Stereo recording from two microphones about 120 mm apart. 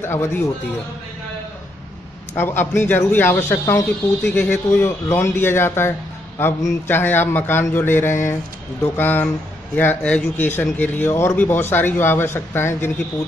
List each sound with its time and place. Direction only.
0.0 s speech: 20° left (ahead or behind)
2.3 s speech: 20° left (ahead or behind)